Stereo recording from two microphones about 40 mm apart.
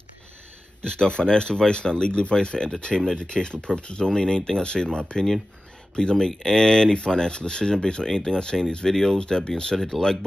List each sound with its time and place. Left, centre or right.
0.8 s speech: left
9.2 s speech: left
9.8 s speech: centre